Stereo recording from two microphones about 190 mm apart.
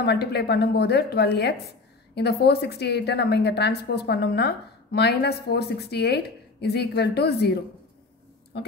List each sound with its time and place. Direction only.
0.0 s a woman's voice: 60° left (ahead or behind)